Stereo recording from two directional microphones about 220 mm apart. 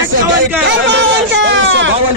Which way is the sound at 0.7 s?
55° right (ahead or behind).